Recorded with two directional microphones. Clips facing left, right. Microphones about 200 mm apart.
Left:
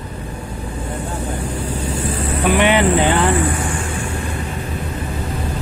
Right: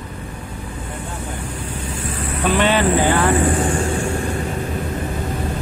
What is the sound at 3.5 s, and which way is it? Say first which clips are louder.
Vehicle: right 4 dB; 35° right (ahead or behind).